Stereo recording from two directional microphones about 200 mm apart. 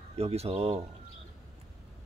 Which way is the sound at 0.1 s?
30° right (ahead or behind).